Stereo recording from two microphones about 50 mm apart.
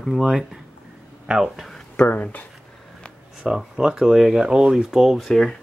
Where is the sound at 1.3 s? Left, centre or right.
Centre.